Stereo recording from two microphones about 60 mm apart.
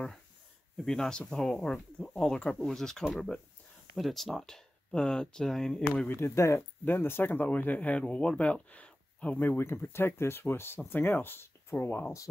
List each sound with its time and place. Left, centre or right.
0.7 s speech: centre
6.0 s speech: left
6.8 s speech: left; by 8.5 s centre
8.6 s a sound: left
9.4 s speech: left